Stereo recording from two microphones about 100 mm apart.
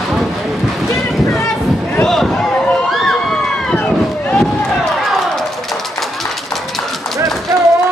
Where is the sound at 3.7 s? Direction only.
20° left (ahead or behind).